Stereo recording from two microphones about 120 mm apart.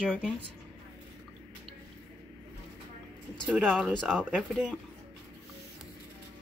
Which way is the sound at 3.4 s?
10° right (ahead or behind).